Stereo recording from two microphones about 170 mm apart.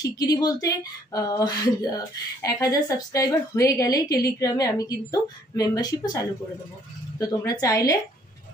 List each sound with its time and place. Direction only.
0.0 s a woman's voice: 20° left (ahead or behind)